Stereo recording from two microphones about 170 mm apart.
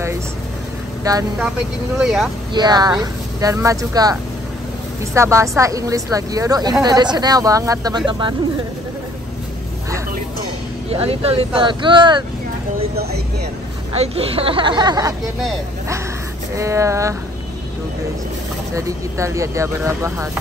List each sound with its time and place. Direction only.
1.1 s a woman's voice: 20° right (ahead or behind)
2.0 s speech: 5° right (ahead or behind)
2.5 s a woman's voice: 25° right (ahead or behind)
10.9 s speech: 35° right (ahead or behind)
13.9 s speech: 35° right (ahead or behind)
16.5 s speech: 15° right (ahead or behind)
18.8 s speech: 20° right (ahead or behind)